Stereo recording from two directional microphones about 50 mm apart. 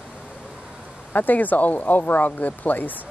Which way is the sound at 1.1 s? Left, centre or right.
Left.